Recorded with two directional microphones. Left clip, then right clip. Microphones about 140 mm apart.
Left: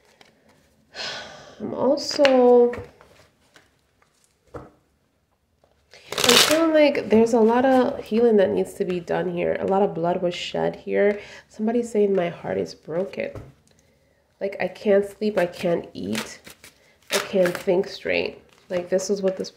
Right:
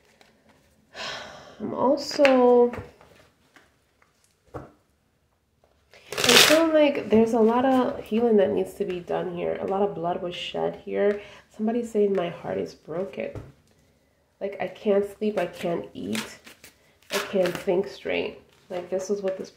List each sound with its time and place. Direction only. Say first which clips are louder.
0.9 s a sound: left 2 dB; 15° left (ahead or behind)
2.3 s speech: left 4 dB; 15° left (ahead or behind)
6.0 s speech: even; 30° left (ahead or behind)
8.8 s speech: left 3 dB; 40° left (ahead or behind)
14.4 s speech: left 3 dB; 30° left (ahead or behind)
17.3 s speech: left 3 dB; 25° left (ahead or behind)
18.7 s speech: left 5 dB; 45° left (ahead or behind)